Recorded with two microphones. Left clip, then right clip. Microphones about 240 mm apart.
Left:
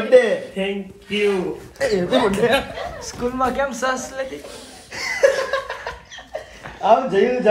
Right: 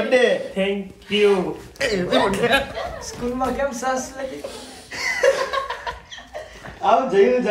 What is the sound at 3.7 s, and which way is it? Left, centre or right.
Speech, centre.